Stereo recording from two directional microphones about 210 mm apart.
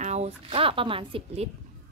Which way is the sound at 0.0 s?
30° right (ahead or behind).